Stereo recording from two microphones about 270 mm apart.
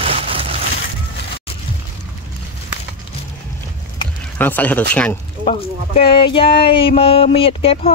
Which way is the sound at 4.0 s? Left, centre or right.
Centre.